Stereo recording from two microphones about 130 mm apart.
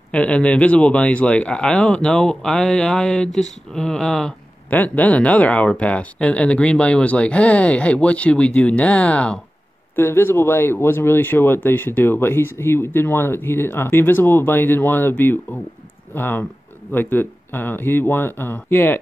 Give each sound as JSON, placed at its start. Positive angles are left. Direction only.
{"t": 0.1, "sound": "speech", "side_deg": 10}